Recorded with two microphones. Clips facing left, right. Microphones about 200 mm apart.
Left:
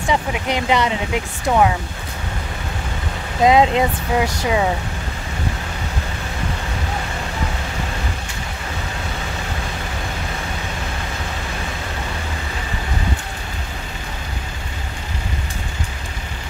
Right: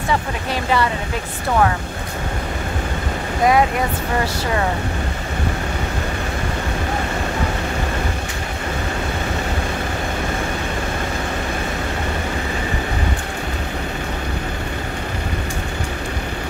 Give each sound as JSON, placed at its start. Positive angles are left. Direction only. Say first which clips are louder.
{"t": 0.1, "sound": "speech", "louder": "left 2 dB", "side_deg": 20}
{"t": 3.4, "sound": "speech", "louder": "left 3 dB", "side_deg": 20}